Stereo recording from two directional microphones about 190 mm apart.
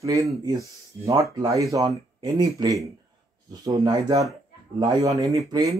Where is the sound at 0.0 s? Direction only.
20° right (ahead or behind).